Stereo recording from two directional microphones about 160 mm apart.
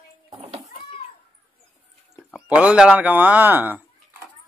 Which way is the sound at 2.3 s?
5° right (ahead or behind).